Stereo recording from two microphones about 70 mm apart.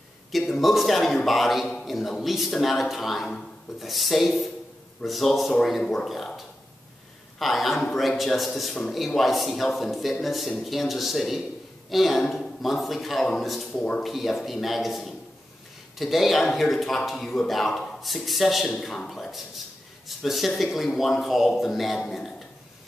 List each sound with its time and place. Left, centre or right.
0.3 s a man's voice: centre
7.3 s a man's voice: centre
13.7 s speech: centre
14.0 s a man's voice: centre